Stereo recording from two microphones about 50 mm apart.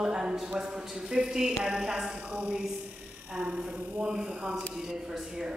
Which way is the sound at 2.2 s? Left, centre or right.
Right.